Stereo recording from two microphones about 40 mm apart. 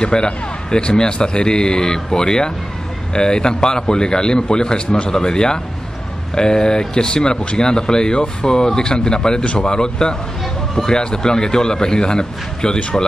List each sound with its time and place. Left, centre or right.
0.0 s speech: left